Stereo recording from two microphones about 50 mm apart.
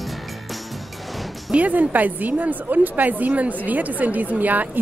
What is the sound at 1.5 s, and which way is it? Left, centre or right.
A woman's voice, right.